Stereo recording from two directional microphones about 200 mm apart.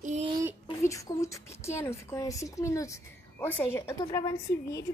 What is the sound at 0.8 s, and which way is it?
A woman's voice, 15° left (ahead or behind).